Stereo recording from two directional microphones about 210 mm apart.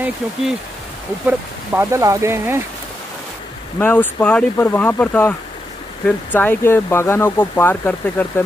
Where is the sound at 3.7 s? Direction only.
10° left (ahead or behind).